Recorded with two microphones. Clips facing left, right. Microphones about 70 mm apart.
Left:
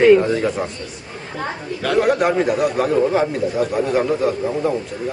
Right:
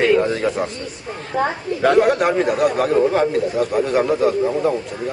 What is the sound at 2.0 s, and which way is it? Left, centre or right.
A man's voice, centre.